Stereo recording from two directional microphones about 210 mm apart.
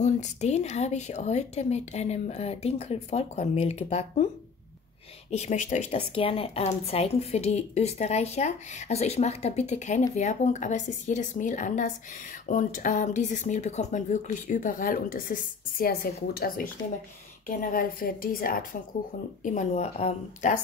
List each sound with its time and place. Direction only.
0.0 s speech: 35° left (ahead or behind)
5.3 s a woman's voice: 35° left (ahead or behind)